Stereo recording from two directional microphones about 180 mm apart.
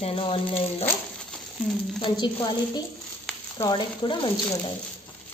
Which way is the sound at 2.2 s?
25° left (ahead or behind).